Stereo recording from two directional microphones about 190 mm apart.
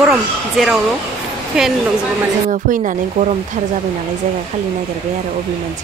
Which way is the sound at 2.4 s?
40° right (ahead or behind).